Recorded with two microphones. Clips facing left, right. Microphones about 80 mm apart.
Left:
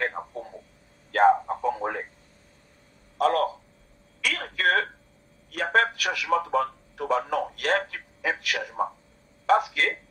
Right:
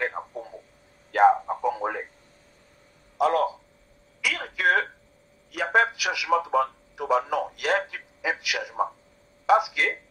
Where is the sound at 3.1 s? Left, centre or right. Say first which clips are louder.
Even; centre.